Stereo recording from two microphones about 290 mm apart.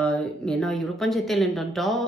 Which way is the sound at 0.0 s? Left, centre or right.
Centre.